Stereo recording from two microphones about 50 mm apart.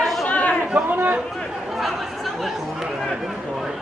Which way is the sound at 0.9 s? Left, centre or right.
Right.